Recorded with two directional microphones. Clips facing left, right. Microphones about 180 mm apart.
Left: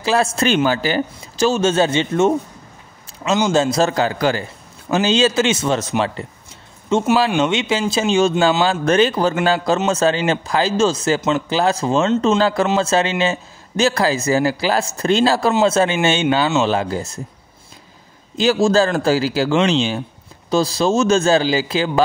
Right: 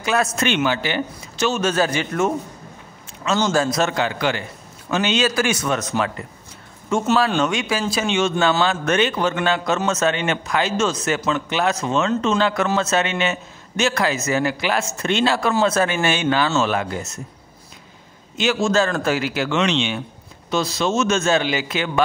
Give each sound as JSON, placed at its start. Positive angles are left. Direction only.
{"t": 0.0, "sound": "a man's voice", "side_deg": 30}
{"t": 18.4, "sound": "a man's voice", "side_deg": 35}